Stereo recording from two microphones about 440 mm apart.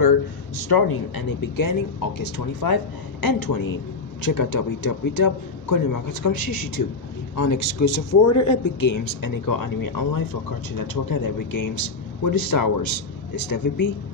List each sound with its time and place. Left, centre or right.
0.6 s speech: left